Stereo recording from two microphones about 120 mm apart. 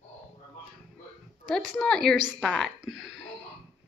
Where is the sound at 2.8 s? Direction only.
5° right (ahead or behind).